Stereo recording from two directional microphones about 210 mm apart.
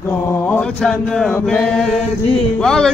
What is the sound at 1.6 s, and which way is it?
Chant, centre (ahead or behind).